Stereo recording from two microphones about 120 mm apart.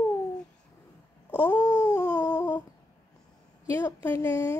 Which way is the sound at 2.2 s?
15° left (ahead or behind).